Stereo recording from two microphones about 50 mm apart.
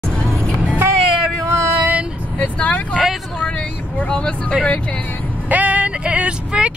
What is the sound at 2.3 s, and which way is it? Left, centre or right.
Vehicle, left.